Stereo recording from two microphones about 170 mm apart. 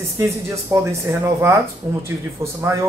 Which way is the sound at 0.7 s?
15° right (ahead or behind).